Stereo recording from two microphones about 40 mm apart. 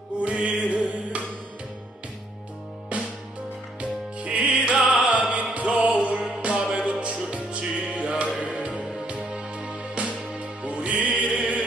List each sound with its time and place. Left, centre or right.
0.2 s music: right
2.9 s music: right
9.3 s music: right